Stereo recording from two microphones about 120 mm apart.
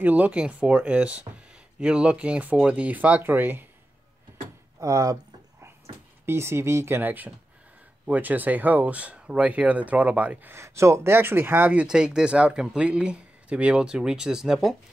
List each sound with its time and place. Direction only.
0.0 s speech: 10° right (ahead or behind)
4.7 s a sound: 25° right (ahead or behind)
6.2 s speech: 20° right (ahead or behind); by 14.8 s 5° right (ahead or behind)